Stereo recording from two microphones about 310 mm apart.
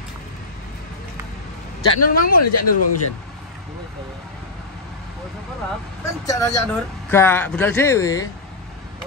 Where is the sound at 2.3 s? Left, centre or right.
Left.